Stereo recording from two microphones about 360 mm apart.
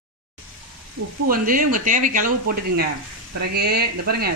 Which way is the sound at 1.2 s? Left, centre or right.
Right.